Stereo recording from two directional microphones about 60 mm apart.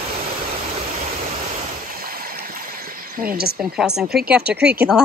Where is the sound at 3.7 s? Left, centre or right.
Centre.